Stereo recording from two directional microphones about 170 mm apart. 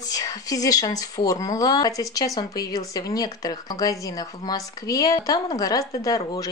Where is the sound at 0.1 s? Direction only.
20° left (ahead or behind).